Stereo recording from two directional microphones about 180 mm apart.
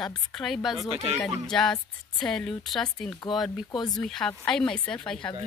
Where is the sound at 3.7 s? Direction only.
20° left (ahead or behind).